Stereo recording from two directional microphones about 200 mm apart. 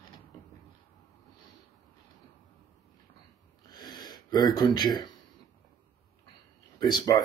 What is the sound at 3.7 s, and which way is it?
Gasp, 20° left (ahead or behind).